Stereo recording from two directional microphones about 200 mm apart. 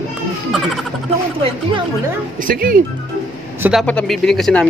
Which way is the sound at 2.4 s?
45° right (ahead or behind).